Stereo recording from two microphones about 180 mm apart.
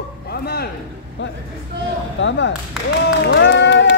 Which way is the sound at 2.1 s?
90° left.